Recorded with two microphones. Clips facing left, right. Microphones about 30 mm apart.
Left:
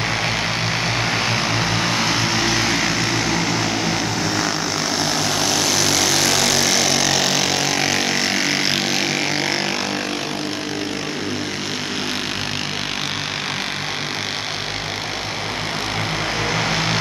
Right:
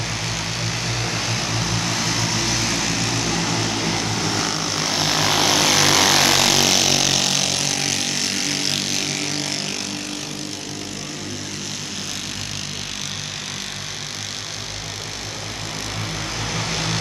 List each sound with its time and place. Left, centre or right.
0.8 s vehicle: left
16.5 s vehicle: left